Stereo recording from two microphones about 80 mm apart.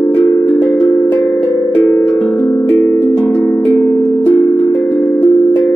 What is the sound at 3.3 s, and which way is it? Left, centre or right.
Cowbell, centre.